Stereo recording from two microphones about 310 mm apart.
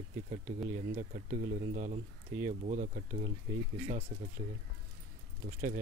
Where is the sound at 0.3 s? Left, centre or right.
Right.